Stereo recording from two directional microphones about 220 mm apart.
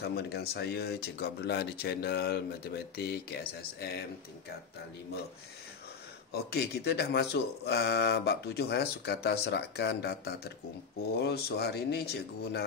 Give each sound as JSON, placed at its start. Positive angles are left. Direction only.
{"t": 0.0, "sound": "speech", "side_deg": 45}
{"t": 6.3, "sound": "speech", "side_deg": 45}